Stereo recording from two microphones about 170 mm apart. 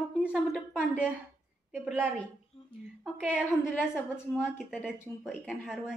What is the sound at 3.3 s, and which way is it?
A woman's voice, 5° right (ahead or behind).